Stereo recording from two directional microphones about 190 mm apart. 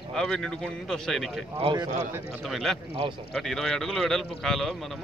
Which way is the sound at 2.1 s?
Centre (ahead or behind).